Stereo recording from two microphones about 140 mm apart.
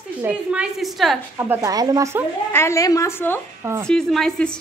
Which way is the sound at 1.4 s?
20° right (ahead or behind).